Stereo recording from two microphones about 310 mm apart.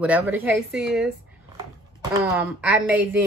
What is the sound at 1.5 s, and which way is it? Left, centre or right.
Speech, centre.